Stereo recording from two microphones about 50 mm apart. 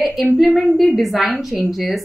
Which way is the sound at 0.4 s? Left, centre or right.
Centre.